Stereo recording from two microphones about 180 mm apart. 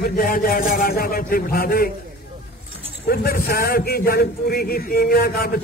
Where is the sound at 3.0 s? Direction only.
60° left (ahead or behind).